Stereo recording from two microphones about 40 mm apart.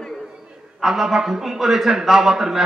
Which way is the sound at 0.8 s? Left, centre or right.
Centre.